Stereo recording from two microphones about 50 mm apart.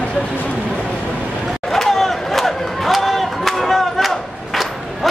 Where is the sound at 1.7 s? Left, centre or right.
Centre.